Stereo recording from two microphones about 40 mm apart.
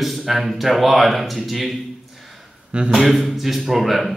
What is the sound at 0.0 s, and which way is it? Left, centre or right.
Speech, centre.